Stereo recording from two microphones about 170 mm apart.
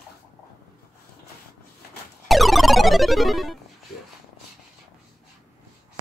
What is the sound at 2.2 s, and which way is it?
Cacophony, centre (ahead or behind).